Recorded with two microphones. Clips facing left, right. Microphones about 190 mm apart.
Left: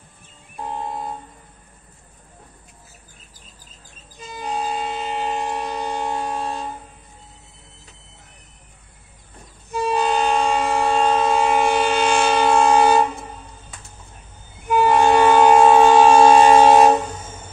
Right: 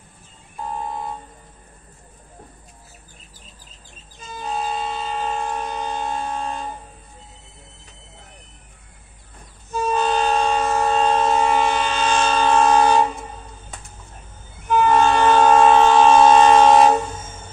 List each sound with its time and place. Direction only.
4.2 s train: 15° left (ahead or behind)
9.7 s train: 15° left (ahead or behind)
14.7 s train: 10° left (ahead or behind)